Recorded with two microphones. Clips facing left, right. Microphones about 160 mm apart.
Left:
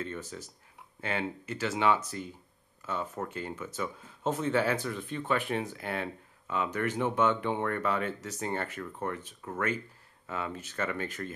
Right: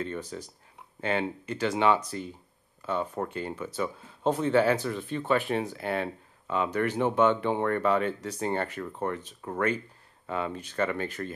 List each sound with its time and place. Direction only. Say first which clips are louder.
0.3 s speech: right 4 dB; 30° right (ahead or behind)